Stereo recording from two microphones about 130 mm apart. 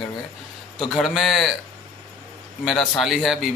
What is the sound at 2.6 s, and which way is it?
Speech, centre (ahead or behind).